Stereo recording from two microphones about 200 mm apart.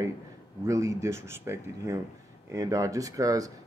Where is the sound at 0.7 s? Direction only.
15° right (ahead or behind).